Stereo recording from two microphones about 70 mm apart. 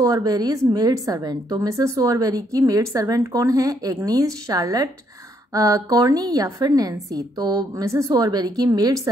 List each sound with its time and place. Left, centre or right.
0.0 s a woman's voice: right
7.8 s a woman's voice: right
8.1 s a woman's voice: right